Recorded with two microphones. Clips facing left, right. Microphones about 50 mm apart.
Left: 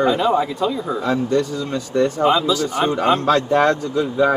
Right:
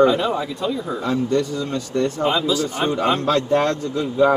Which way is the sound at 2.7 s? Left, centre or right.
Centre.